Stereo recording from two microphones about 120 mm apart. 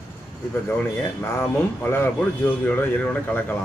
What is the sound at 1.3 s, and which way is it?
Speech, 20° left (ahead or behind).